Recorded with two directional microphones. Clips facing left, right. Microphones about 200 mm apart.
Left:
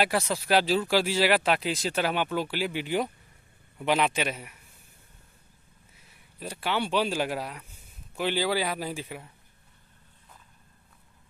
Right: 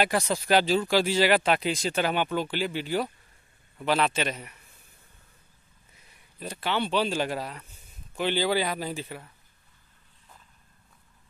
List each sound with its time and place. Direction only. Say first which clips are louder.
0.0 s speech: right 1 dB; 5° left (ahead or behind)
6.4 s speech: right 1 dB; 10° left (ahead or behind)